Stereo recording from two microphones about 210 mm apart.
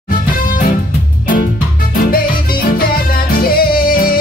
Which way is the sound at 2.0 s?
45° left (ahead or behind).